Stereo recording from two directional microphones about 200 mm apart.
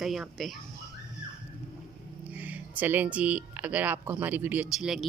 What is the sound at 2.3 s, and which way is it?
Speech, 10° right (ahead or behind).